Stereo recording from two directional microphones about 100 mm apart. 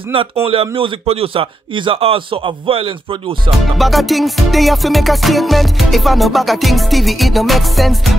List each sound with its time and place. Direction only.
0.1 s a man's voice: 60° right (ahead or behind)
3.7 s music: centre (ahead or behind)